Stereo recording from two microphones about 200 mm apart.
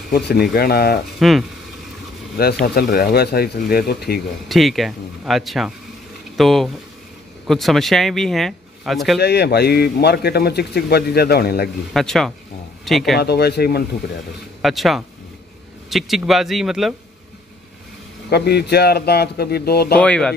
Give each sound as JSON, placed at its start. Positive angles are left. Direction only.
{"t": 0.1, "sound": "a man's voice", "side_deg": 50}
{"t": 2.6, "sound": "a man's voice", "side_deg": 50}
{"t": 4.5, "sound": "speech", "side_deg": 0}
{"t": 9.2, "sound": "a man's voice", "side_deg": 55}
{"t": 11.9, "sound": "speech", "side_deg": 0}
{"t": 13.2, "sound": "a man's voice", "side_deg": 55}
{"t": 14.6, "sound": "speech", "side_deg": 0}
{"t": 18.3, "sound": "a man's voice", "side_deg": 55}
{"t": 20.0, "sound": "speech", "side_deg": 5}